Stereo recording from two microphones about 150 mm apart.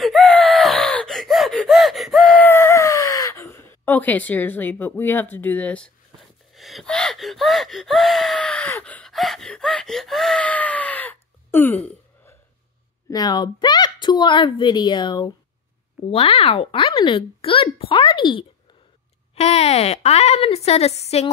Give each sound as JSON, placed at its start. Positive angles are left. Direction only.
{"t": 0.0, "sound": "gasp", "side_deg": 0}
{"t": 13.1, "sound": "a woman's voice", "side_deg": 25}
{"t": 19.3, "sound": "speech", "side_deg": 45}